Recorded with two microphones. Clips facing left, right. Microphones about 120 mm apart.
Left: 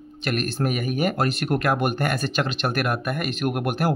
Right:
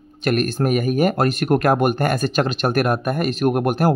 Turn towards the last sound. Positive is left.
turn(degrees=-40)  # may be behind; listen again after turning